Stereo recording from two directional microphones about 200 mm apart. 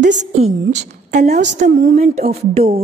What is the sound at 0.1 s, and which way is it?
A woman's voice, 35° right (ahead or behind).